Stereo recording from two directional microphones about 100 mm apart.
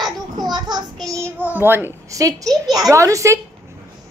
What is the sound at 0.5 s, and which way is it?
Child singing, 45° right (ahead or behind).